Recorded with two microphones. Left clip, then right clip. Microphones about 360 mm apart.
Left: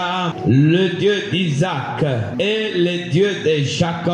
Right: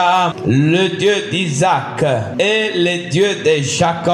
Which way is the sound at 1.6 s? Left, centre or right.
Right.